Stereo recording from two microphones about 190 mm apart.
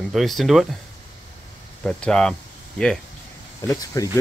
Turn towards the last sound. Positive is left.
turn(degrees=20)  # may be behind; listen again after turning